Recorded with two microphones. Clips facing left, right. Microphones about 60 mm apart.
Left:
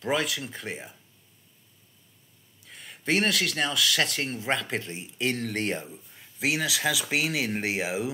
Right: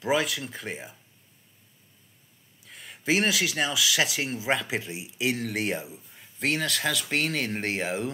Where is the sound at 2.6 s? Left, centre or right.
Centre.